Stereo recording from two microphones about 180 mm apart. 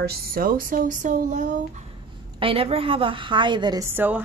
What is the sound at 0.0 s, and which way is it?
Speech, 55° right (ahead or behind).